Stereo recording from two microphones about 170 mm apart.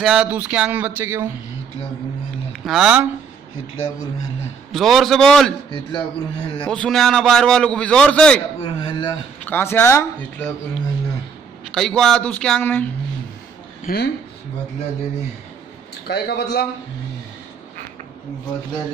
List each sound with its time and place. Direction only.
0.0 s speech: 5° right (ahead or behind)
2.5 s speech: centre (ahead or behind)
4.7 s a man's voice: centre (ahead or behind)
5.9 s a man's voice: 30° left (ahead or behind)
6.6 s a man's voice: 5° left (ahead or behind)
8.6 s a sound: 30° left (ahead or behind)
9.5 s speech: 15° left (ahead or behind)
11.7 s a man's voice: centre (ahead or behind)
13.8 s a man's voice: 70° left (ahead or behind)
16.1 s a man's voice: 70° left (ahead or behind)